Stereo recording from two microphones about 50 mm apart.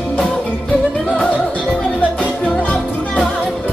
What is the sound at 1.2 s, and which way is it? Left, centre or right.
Music, left.